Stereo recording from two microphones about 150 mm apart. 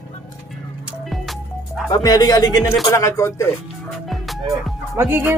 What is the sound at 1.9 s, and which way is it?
Speech, 30° left (ahead or behind).